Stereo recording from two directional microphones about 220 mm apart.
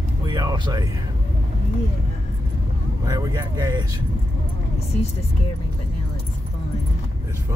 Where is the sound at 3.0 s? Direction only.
15° right (ahead or behind).